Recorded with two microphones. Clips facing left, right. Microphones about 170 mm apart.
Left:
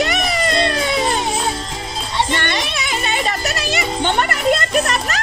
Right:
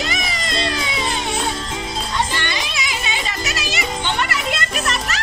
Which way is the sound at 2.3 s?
55° left (ahead or behind).